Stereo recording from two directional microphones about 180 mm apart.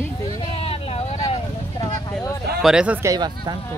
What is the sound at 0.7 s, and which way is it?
Vehicle, 30° left (ahead or behind).